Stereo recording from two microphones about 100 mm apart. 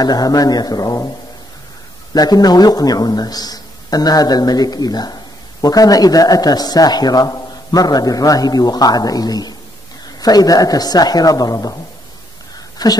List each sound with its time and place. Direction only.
0.0 s a man's voice: 40° left (ahead or behind)
2.1 s a man's voice: 40° left (ahead or behind)
12.8 s speech: 40° left (ahead or behind)